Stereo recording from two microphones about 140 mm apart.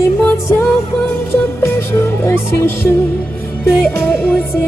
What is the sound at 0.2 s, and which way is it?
Music, 15° left (ahead or behind).